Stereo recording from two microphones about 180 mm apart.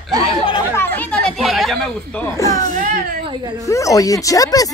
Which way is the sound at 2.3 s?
20° left (ahead or behind).